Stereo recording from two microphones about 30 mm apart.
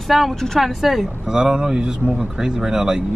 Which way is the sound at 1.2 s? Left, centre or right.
Right.